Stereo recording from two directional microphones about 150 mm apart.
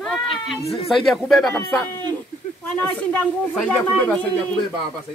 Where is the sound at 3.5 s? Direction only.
Centre (ahead or behind).